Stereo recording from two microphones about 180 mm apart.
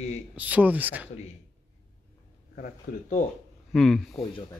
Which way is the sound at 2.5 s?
50° left (ahead or behind).